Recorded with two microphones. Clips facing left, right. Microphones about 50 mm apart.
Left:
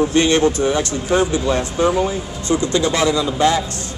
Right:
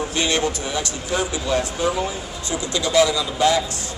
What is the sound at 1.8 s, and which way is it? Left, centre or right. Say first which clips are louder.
Speech: left 7 dB; centre.